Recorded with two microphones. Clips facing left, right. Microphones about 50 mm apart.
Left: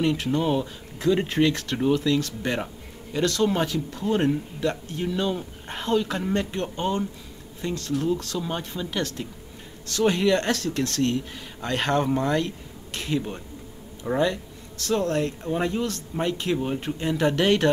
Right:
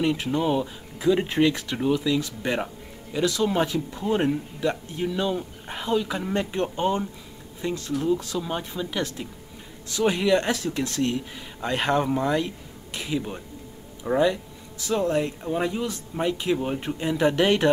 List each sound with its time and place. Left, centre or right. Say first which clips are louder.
0.4 s speech: right 2 dB; centre
0.7 s speech: right 1 dB; centre
3.6 s speech: even; right
5.0 s speech: right 1 dB; centre; by 8.1 s right
8.4 s speech: right 1 dB; centre
9.0 s speech: even; centre